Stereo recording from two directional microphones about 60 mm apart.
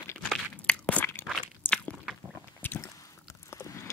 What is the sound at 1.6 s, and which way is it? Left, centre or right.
Biting, left.